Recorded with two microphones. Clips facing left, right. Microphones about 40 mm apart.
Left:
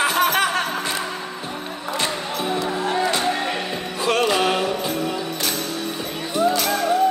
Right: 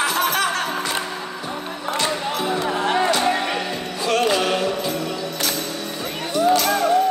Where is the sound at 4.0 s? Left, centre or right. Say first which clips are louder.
Even; centre.